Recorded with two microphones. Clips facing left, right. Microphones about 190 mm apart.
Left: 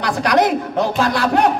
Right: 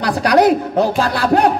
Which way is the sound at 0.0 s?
35° right (ahead or behind).